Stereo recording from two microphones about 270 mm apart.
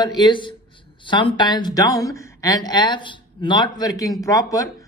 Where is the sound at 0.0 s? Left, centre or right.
Centre.